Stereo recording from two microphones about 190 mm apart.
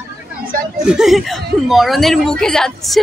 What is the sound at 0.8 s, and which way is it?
A woman's voice, centre (ahead or behind).